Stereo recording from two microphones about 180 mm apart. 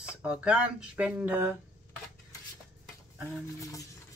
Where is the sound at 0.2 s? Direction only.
5° right (ahead or behind).